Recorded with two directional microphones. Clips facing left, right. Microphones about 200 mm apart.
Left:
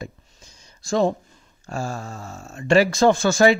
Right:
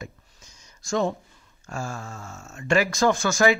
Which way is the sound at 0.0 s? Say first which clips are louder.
Left 4 dB; 30° left (ahead or behind).